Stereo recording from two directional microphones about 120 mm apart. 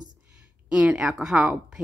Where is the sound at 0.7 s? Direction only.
10° right (ahead or behind).